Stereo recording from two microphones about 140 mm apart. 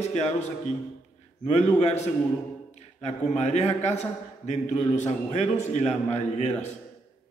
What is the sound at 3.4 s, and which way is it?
A man's voice, 55° left (ahead or behind).